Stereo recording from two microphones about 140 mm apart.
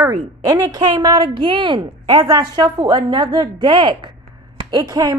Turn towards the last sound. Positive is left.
turn(degrees=-25)  # may be behind; listen again after turning